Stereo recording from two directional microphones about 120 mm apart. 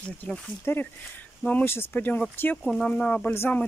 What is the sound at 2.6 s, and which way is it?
Speech, 5° left (ahead or behind).